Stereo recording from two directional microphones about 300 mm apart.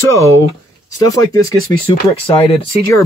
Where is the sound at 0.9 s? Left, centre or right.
Centre.